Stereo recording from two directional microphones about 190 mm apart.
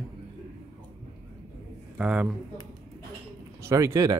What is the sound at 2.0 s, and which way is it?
Speech, 5° right (ahead or behind).